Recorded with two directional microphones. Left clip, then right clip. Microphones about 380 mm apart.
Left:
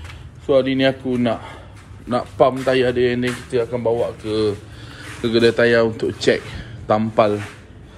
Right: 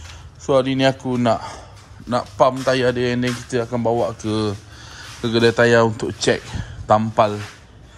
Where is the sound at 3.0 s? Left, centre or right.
Right.